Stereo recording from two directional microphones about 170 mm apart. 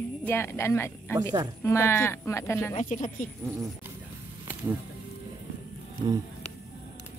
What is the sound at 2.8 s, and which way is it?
Speech, 50° left (ahead or behind).